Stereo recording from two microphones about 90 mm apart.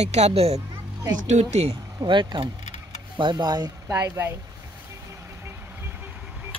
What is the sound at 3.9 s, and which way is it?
Speech, 30° right (ahead or behind).